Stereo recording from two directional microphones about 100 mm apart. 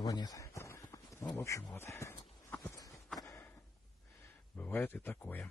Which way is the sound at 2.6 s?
40° left (ahead or behind).